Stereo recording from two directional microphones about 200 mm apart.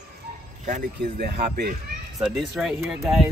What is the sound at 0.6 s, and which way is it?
Speech, 45° right (ahead or behind).